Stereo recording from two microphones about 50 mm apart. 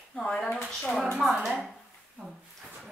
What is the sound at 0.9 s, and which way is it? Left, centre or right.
Speech, centre.